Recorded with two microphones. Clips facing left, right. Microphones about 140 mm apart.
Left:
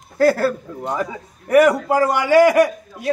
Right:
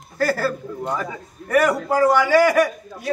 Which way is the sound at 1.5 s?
20° left (ahead or behind).